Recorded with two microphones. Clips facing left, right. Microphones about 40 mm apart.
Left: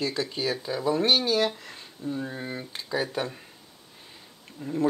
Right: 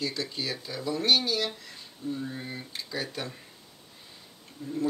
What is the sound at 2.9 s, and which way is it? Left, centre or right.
Speech, centre.